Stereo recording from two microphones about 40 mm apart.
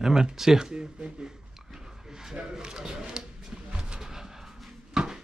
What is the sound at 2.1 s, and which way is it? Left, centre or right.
Speech, centre.